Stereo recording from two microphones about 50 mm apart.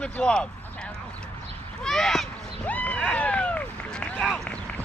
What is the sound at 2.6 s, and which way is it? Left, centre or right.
Run, left.